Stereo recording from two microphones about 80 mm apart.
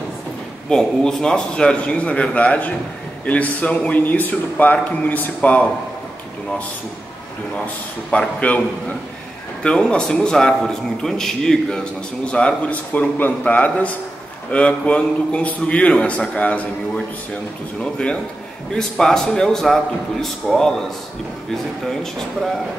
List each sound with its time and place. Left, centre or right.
0.7 s a man's voice: centre
8.1 s a man's voice: centre